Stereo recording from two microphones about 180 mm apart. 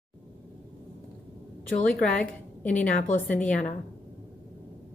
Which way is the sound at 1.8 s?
5° left (ahead or behind).